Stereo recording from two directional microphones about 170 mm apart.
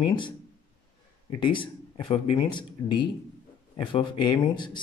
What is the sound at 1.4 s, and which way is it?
Speech, 30° left (ahead or behind).